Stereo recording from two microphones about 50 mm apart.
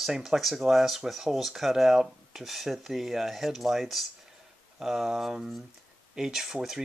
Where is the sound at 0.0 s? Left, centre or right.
Centre.